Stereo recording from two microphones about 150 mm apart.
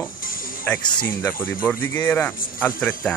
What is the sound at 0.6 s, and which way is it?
Speech, 10° left (ahead or behind).